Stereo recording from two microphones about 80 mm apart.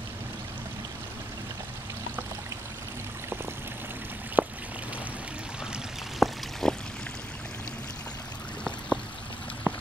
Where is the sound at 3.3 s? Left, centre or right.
Right.